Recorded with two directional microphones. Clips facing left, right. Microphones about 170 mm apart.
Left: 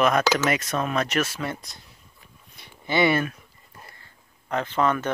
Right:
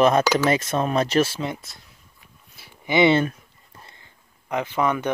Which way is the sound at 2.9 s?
20° right (ahead or behind).